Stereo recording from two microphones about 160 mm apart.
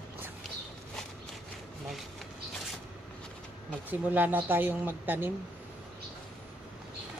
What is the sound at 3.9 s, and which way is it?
Speech, 10° right (ahead or behind).